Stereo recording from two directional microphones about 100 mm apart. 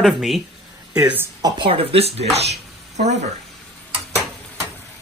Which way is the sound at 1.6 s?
70° right (ahead or behind).